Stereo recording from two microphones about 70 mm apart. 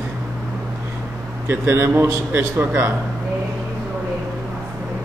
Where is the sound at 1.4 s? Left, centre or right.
Right.